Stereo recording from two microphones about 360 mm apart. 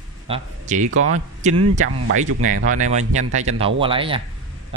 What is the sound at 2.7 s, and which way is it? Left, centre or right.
Speech, centre.